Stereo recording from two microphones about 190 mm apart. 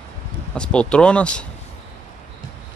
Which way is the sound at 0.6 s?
5° left (ahead or behind).